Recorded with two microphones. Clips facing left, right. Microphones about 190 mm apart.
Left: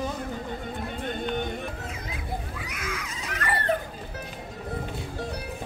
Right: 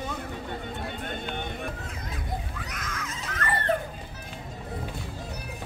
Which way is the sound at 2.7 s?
10° left (ahead or behind).